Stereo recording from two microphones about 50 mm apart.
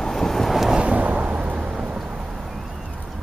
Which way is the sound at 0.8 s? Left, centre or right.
Right.